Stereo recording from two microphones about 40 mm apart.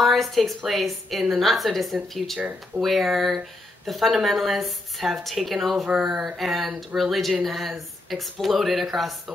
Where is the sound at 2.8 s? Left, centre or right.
Centre.